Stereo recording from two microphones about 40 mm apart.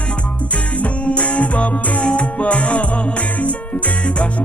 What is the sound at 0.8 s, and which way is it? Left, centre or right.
Music, left.